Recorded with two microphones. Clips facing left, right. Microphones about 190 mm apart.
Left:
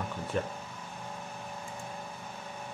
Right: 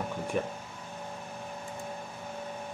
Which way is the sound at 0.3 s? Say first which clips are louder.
Right 1 dB; 10° right (ahead or behind).